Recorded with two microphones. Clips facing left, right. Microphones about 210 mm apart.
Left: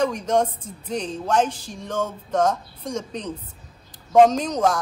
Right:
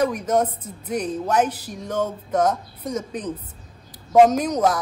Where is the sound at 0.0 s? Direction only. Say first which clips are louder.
Right 1 dB; 5° right (ahead or behind).